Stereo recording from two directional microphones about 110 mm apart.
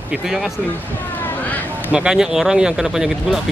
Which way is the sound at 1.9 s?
5° right (ahead or behind).